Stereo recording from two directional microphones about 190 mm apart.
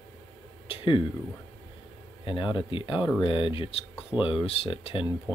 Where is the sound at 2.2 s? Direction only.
25° left (ahead or behind).